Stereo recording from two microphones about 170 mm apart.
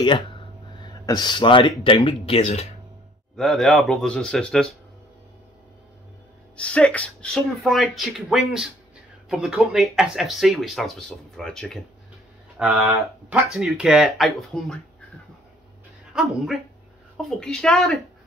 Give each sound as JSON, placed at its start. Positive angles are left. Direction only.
{"t": 0.0, "sound": "speech", "side_deg": 30}
{"t": 3.3, "sound": "speech", "side_deg": 0}
{"t": 6.5, "sound": "speech", "side_deg": 5}
{"t": 16.1, "sound": "speech", "side_deg": 0}